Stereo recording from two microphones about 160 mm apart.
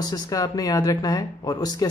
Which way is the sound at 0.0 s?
20° left (ahead or behind).